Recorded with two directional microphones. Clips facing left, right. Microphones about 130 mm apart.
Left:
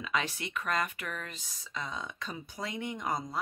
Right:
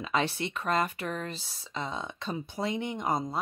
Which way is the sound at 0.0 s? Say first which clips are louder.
Right 5 dB; 30° right (ahead or behind).